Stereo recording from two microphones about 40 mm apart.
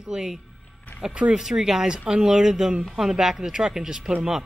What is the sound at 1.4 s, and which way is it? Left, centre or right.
Speech, centre.